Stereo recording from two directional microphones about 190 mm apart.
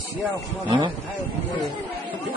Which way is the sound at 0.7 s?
25° right (ahead or behind).